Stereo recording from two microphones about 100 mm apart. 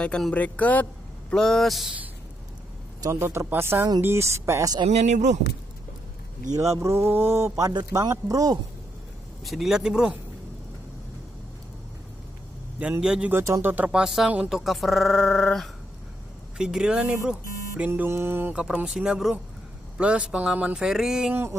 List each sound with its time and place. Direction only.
0.0 s speech: 10° left (ahead or behind)
1.3 s speech: 5° left (ahead or behind)
3.0 s speech: 30° right (ahead or behind)
4.8 s speech: 90° right
6.5 s speech: 30° right (ahead or behind)
9.4 s speech: centre (ahead or behind)
13.0 s speech: 10° right (ahead or behind)
13.3 s speech: 25° right (ahead or behind)
14.0 s speech: 5° right (ahead or behind)
16.5 s speech: 10° right (ahead or behind); by 18.5 s 25° right (ahead or behind)
18.5 s speech: 10° right (ahead or behind)
21.3 s speech: 25° right (ahead or behind)